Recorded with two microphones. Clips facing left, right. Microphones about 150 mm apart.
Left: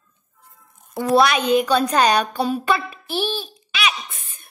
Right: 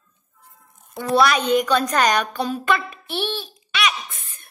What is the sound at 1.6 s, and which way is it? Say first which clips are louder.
A woman's voice: left 2 dB; 10° left (ahead or behind).